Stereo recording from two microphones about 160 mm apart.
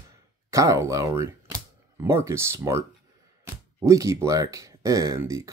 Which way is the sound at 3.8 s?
20° right (ahead or behind).